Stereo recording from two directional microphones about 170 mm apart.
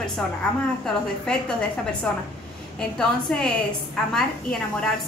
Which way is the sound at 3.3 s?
5° left (ahead or behind).